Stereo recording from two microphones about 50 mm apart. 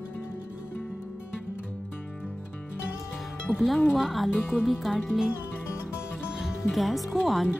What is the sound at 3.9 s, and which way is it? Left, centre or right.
Speech, centre.